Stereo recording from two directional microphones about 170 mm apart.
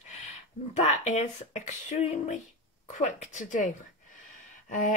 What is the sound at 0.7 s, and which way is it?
Speech, 40° left (ahead or behind).